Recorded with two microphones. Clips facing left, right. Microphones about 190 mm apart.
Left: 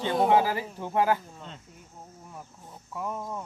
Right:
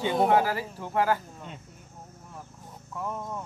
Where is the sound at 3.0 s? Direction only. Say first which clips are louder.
Even; 5° left (ahead or behind).